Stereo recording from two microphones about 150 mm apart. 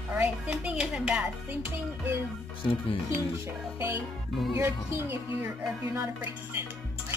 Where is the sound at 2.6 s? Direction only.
35° left (ahead or behind).